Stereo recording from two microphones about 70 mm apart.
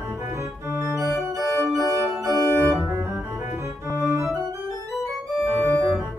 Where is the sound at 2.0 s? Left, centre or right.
Right.